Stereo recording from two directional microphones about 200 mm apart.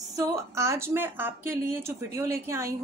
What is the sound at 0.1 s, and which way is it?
A woman's voice, 15° right (ahead or behind).